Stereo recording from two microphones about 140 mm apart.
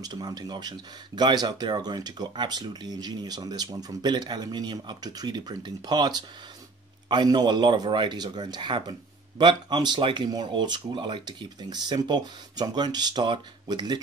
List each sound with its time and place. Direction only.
0.0 s speech: 25° right (ahead or behind)